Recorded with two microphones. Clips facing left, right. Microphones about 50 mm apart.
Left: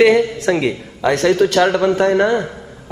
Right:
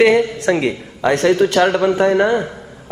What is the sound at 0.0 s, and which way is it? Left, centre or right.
Speech, centre.